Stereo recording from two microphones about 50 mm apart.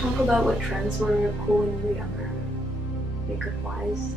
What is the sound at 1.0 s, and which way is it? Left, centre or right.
Speech, centre.